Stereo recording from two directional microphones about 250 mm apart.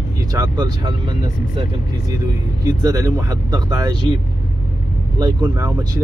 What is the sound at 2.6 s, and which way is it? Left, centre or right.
Speech, centre.